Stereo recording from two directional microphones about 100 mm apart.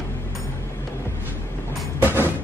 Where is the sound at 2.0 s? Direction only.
20° right (ahead or behind).